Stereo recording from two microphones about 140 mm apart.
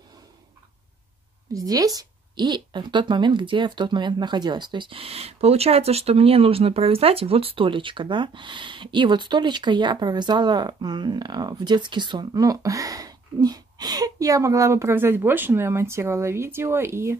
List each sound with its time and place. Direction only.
1.5 s speech: 25° right (ahead or behind)